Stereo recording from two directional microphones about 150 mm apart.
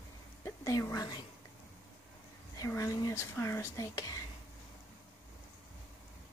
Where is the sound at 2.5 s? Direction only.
20° left (ahead or behind).